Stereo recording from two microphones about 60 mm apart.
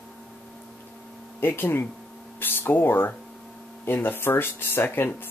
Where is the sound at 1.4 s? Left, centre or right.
Left.